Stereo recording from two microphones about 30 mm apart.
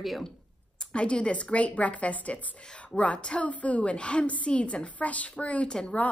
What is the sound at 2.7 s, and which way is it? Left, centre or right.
Speech, left.